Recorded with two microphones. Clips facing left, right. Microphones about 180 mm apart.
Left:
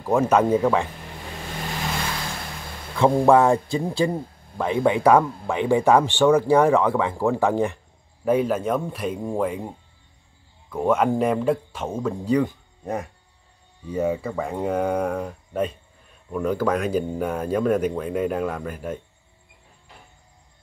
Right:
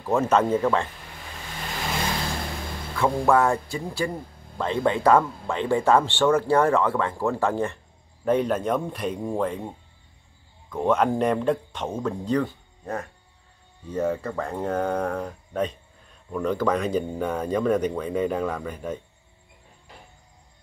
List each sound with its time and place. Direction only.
0.0 s speech: 10° left (ahead or behind)
3.0 s speech: 20° left (ahead or behind)
4.6 s speech: 10° left (ahead or behind)